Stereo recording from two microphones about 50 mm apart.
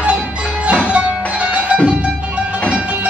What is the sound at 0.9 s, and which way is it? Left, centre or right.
Music, right.